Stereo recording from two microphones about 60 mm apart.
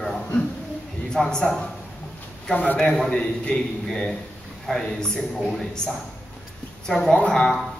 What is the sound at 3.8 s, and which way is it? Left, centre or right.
A man's voice, centre.